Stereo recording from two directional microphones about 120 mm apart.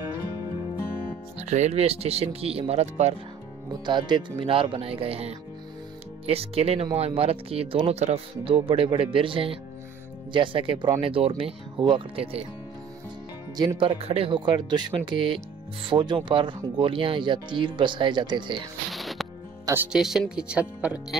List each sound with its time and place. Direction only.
1.4 s speech: 70° right (ahead or behind)
3.8 s speech: 40° right (ahead or behind)
13.7 s speech: 50° right (ahead or behind)
18.9 s music: centre (ahead or behind)
19.6 s speech: 20° right (ahead or behind)
19.9 s speech: 5° right (ahead or behind)